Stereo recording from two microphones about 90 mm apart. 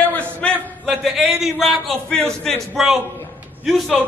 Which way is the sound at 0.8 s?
5° right (ahead or behind).